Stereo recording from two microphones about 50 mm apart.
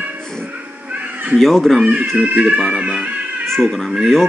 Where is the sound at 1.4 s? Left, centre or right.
Centre.